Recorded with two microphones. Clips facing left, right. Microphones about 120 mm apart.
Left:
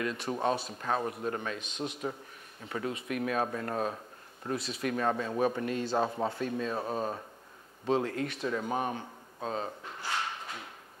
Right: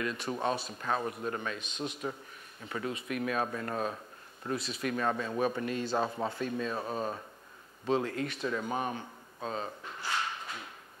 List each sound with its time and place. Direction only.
0.0 s speech: 40° left (ahead or behind)
4.6 s speech: 55° left (ahead or behind)
5.9 s a man's voice: 25° left (ahead or behind)